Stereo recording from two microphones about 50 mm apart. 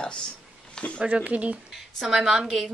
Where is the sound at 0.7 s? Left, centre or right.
Left.